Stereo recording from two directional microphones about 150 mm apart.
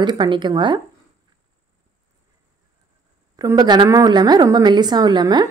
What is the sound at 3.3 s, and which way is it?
A woman's voice, 25° right (ahead or behind).